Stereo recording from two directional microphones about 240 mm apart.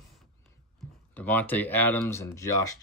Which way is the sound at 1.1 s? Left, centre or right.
Centre.